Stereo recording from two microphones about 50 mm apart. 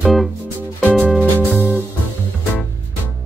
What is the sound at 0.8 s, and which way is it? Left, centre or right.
Music, left.